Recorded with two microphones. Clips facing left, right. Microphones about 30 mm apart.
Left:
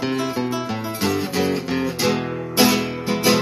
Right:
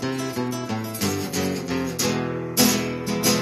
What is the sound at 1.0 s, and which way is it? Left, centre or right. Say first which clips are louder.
Music: left 5 dB; left.